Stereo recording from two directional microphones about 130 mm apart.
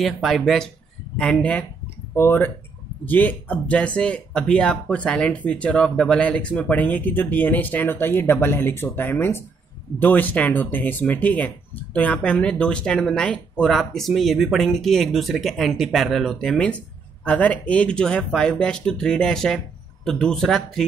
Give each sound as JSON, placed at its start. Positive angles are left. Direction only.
{"t": 0.0, "sound": "speech", "side_deg": 0}
{"t": 2.1, "sound": "speech", "side_deg": 20}